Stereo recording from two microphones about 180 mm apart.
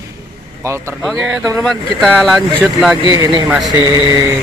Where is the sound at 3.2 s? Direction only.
20° right (ahead or behind).